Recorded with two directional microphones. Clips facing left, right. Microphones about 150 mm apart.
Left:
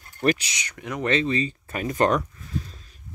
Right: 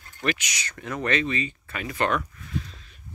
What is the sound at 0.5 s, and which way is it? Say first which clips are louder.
Speech: even; 15° left (ahead or behind).